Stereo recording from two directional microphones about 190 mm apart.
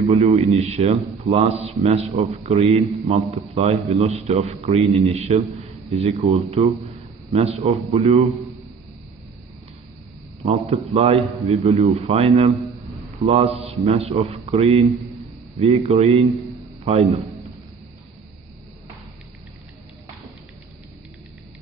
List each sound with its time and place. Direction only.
0.0 s a man's voice: 35° right (ahead or behind)
10.4 s a man's voice: 35° right (ahead or behind)